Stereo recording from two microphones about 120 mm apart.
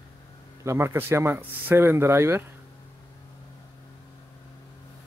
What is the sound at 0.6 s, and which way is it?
Speech, 20° right (ahead or behind).